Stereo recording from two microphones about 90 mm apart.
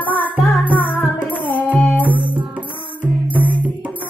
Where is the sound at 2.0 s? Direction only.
20° right (ahead or behind).